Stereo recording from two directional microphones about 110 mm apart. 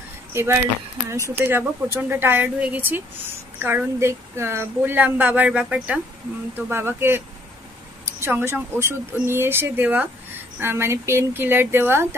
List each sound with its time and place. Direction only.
0.3 s speech: 25° right (ahead or behind)